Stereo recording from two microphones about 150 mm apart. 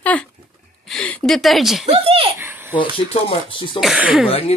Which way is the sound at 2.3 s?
15° right (ahead or behind).